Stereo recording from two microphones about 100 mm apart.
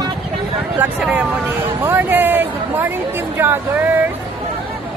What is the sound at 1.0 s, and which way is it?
Speech, 10° right (ahead or behind).